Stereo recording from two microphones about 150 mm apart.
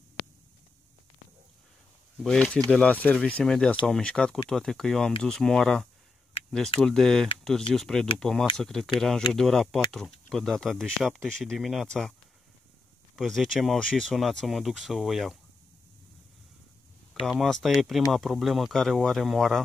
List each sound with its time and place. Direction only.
2.2 s speech: 5° left (ahead or behind)
13.1 s speech: centre (ahead or behind)
17.1 s speech: centre (ahead or behind)